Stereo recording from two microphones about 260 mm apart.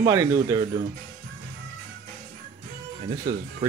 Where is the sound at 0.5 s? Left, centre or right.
Centre.